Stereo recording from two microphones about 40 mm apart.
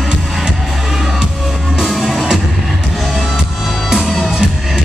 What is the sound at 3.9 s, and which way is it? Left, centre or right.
Music, centre.